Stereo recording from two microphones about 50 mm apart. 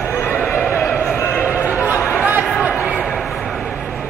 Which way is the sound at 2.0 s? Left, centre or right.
Left.